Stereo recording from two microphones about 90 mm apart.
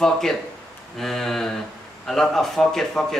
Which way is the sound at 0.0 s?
5° left (ahead or behind).